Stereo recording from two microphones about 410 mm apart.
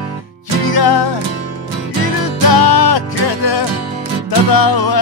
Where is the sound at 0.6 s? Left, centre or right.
Left.